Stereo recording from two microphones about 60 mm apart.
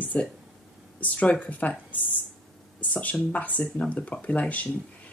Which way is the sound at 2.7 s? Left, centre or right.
Left.